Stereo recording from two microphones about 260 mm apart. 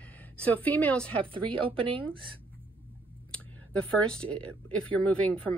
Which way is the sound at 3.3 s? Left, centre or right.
Centre.